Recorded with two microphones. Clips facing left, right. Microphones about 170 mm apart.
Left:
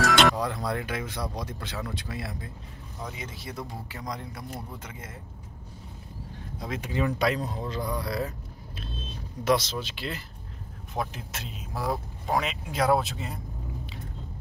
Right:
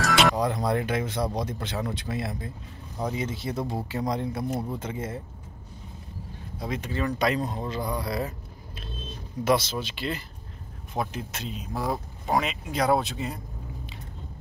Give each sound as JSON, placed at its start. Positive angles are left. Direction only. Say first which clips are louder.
{"t": 0.0, "sound": "music", "louder": "left 1 dB", "side_deg": 0}
{"t": 0.4, "sound": "speech", "louder": "right 4 dB", "side_deg": -20}
{"t": 3.0, "sound": "speech", "louder": "right 9 dB", "side_deg": -35}
{"t": 3.3, "sound": "speech", "louder": "right 7 dB", "side_deg": -25}
{"t": 6.8, "sound": "speech", "louder": "left 2 dB", "side_deg": 15}
{"t": 7.2, "sound": "speech", "louder": "right 1 dB", "side_deg": 0}